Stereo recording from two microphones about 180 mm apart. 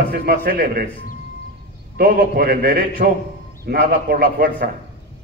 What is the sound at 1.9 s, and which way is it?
A man's voice, 55° right (ahead or behind).